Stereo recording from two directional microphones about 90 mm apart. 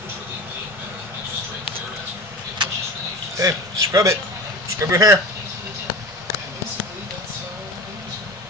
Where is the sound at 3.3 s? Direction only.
40° right (ahead or behind).